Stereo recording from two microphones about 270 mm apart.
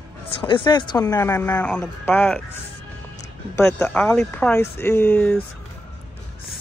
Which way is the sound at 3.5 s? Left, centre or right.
Centre.